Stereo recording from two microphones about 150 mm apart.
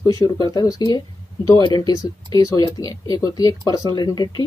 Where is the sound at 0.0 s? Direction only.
25° left (ahead or behind).